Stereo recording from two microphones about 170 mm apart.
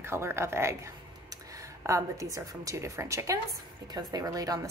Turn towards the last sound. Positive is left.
turn(degrees=-20)  # may be behind; listen again after turning